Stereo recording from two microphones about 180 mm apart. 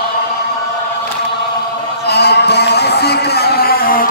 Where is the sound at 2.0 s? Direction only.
65° left (ahead or behind).